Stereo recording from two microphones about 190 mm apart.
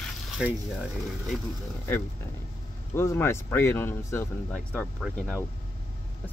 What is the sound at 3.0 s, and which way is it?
Speech, 15° left (ahead or behind).